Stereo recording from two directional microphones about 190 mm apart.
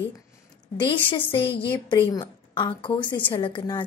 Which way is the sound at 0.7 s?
25° left (ahead or behind).